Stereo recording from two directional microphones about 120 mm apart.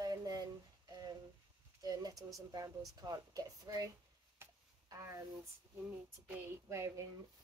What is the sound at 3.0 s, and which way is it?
Speech, 35° right (ahead or behind).